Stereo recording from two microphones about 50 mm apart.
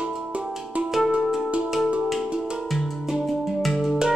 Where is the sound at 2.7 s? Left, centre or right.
Centre.